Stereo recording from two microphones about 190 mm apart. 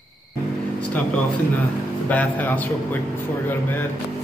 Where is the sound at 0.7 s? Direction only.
5° left (ahead or behind).